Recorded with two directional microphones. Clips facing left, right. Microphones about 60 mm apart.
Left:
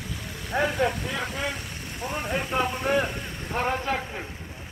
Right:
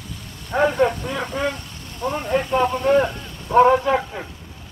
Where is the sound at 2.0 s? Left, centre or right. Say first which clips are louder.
Right 7 dB; centre.